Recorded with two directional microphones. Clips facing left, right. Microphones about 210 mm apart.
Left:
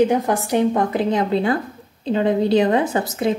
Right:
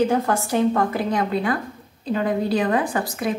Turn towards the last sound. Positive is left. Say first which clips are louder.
# left 4 dB
turn(degrees=25)  # may be behind; listen again after turning